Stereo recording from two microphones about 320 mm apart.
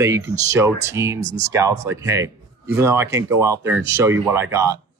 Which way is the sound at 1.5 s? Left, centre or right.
Centre.